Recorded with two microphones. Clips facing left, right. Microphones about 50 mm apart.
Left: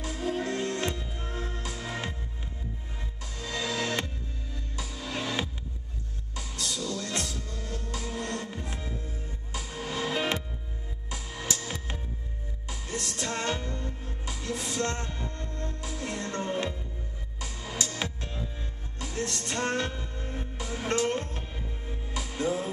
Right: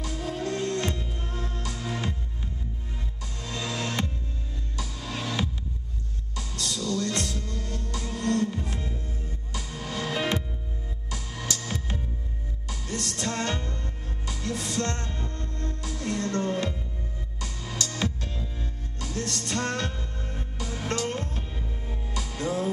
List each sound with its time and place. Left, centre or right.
0.0 s music: left
3.8 s music: left